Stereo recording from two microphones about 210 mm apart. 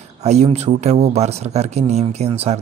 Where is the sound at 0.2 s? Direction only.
30° right (ahead or behind).